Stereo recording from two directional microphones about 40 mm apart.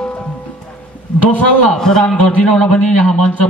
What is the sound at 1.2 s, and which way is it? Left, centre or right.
A man's voice, left.